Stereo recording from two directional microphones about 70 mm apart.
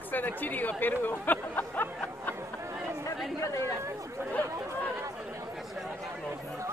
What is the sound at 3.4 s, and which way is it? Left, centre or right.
Chatter, left.